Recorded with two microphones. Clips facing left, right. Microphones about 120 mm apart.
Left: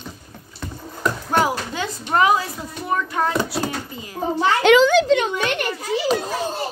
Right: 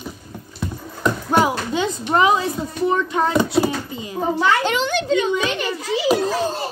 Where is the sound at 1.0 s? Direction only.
20° right (ahead or behind).